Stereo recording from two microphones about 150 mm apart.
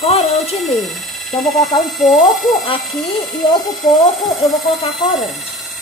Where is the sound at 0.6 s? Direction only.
Centre (ahead or behind).